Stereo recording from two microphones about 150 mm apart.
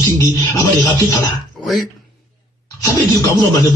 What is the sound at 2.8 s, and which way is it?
Speech, 20° left (ahead or behind).